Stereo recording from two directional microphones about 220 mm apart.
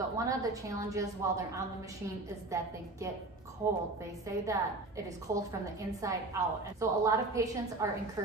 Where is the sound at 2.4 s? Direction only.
15° right (ahead or behind).